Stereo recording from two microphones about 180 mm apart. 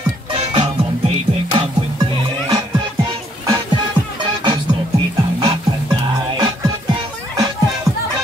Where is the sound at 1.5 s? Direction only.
25° right (ahead or behind).